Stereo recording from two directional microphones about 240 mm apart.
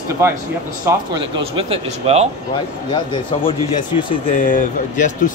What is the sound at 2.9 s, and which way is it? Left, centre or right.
Speech, left.